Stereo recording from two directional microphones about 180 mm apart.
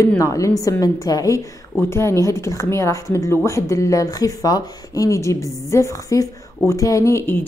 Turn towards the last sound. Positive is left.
turn(degrees=15)  # may be behind; listen again after turning